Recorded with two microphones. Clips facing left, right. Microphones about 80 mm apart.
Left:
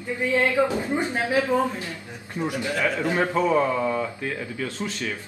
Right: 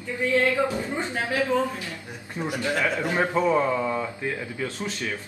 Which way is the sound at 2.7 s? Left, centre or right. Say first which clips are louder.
Even; right.